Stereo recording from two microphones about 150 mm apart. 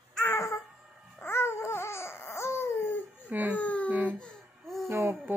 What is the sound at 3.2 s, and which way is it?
Baby cry, 10° right (ahead or behind).